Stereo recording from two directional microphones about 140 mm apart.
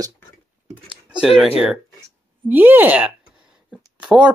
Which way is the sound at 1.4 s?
45° left (ahead or behind).